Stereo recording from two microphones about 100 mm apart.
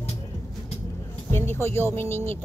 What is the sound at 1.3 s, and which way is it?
Speech, 25° left (ahead or behind).